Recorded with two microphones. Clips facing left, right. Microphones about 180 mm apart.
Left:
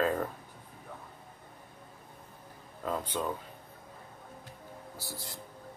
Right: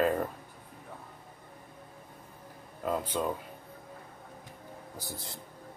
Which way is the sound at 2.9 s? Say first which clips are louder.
Right 2 dB; 15° right (ahead or behind).